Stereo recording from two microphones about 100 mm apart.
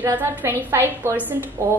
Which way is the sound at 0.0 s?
20° right (ahead or behind).